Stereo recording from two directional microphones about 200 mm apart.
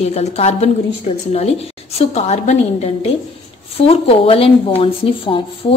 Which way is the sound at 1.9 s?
30° left (ahead or behind).